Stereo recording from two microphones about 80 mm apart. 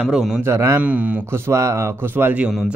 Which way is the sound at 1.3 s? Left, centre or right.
Right.